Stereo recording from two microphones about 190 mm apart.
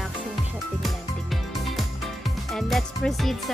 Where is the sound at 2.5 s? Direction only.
Centre (ahead or behind).